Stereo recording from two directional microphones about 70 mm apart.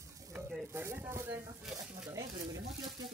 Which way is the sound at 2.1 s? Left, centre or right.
Right.